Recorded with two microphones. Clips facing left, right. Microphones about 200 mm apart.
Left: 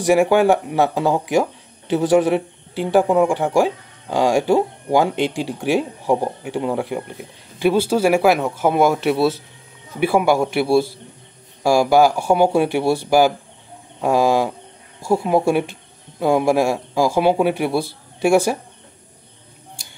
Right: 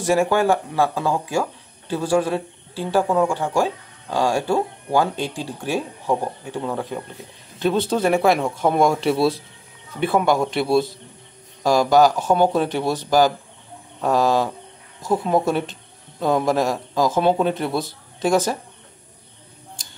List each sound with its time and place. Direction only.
0.0 s speech: 15° left (ahead or behind)
14.0 s bird: 15° left (ahead or behind)
15.0 s speech: 10° left (ahead or behind)